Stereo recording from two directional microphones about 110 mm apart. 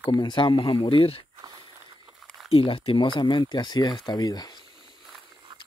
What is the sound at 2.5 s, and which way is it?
Speech, 60° left (ahead or behind).